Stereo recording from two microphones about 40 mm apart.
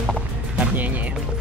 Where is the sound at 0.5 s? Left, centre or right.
Right.